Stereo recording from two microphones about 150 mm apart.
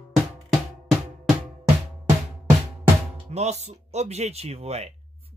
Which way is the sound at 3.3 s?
45° right (ahead or behind).